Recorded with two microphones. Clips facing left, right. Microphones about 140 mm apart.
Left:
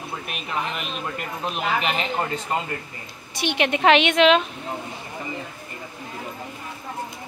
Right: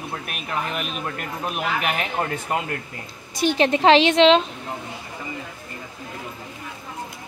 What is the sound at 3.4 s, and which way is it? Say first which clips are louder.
A woman's voice: right 3 dB; 35° right (ahead or behind).